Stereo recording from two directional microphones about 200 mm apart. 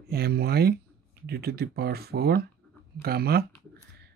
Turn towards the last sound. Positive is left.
turn(degrees=-50)  # may be behind; listen again after turning